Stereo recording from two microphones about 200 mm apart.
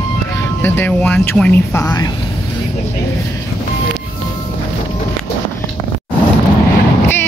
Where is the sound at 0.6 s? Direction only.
10° left (ahead or behind).